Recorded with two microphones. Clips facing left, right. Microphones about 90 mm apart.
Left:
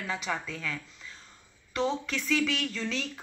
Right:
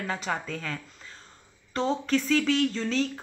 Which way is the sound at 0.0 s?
40° right (ahead or behind).